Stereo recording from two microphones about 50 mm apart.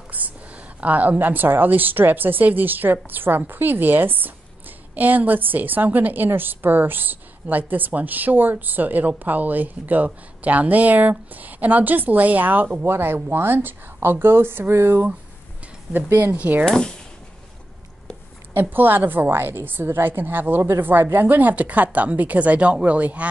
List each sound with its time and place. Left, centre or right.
0.1 s a sound: right
0.7 s a woman's voice: right
12.8 s speech: right
16.3 s a woman's voice: right
16.6 s speech: centre
18.5 s a woman's voice: right